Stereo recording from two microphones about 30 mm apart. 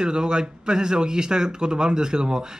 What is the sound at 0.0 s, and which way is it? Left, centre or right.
A man's voice, right.